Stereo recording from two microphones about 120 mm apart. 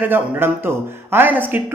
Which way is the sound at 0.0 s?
15° right (ahead or behind).